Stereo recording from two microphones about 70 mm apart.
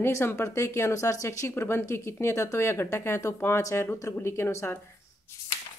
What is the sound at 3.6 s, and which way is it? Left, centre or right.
Speech, left.